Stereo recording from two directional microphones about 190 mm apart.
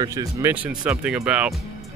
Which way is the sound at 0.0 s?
15° right (ahead or behind).